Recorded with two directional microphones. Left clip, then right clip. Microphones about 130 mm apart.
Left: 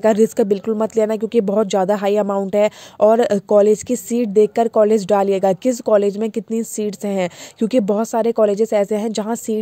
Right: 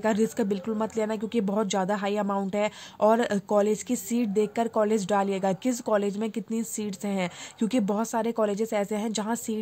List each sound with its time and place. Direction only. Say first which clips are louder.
0.0 s speech: left 11 dB; 45° left (ahead or behind)